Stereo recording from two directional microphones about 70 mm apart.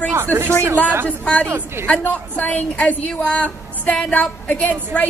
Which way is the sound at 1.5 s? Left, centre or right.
Right.